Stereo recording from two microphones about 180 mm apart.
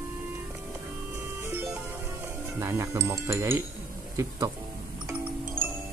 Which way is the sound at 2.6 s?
15° right (ahead or behind).